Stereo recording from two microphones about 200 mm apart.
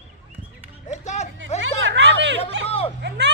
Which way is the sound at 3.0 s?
55° right (ahead or behind).